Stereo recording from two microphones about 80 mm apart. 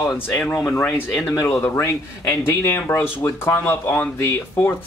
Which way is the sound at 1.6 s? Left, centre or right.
Left.